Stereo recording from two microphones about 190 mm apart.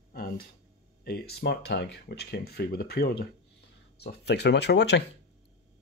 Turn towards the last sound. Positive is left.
turn(degrees=65)  # may be behind; listen again after turning